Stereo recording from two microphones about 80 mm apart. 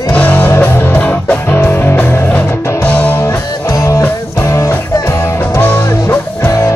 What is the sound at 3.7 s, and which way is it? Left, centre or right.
Music, left.